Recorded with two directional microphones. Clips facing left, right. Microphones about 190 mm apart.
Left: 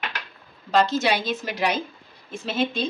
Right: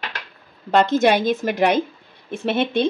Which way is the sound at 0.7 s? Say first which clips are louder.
Right 5 dB; 55° right (ahead or behind).